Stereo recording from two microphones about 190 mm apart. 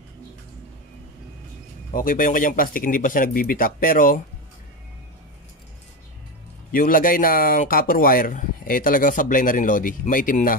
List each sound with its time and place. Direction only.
1.9 s speech: 45° left (ahead or behind)
6.7 s speech: 45° left (ahead or behind)